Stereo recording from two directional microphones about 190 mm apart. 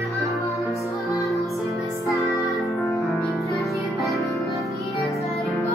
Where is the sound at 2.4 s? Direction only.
Centre (ahead or behind).